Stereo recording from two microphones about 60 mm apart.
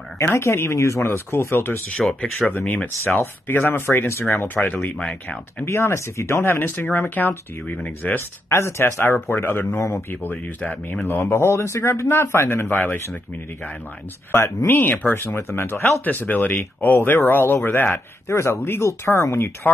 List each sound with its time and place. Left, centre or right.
0.5 s speech: left
2.0 s speech: centre
2.5 s speech: left
3.2 s speech: left
5.7 s speech: left
6.4 s speech: left
8.5 s speech: left
9.0 s speech: left
11.1 s speech: left
12.7 s speech: left
14.7 s speech: left
18.3 s speech: left